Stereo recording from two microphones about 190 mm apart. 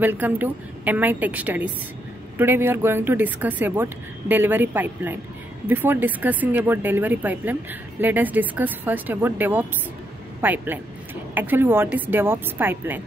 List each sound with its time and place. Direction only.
0.0 s speech: 10° right (ahead or behind)